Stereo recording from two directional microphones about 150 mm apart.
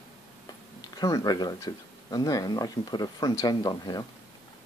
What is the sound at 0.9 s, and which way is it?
Speech, 25° left (ahead or behind).